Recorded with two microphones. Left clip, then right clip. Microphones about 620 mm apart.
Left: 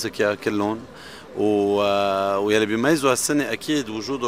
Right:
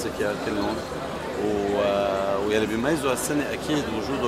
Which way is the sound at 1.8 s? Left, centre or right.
Left.